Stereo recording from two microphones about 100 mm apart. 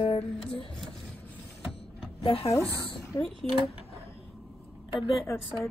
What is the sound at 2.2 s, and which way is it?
Speech, 75° left (ahead or behind).